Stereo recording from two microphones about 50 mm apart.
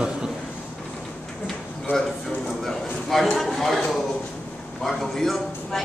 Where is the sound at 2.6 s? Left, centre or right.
Centre.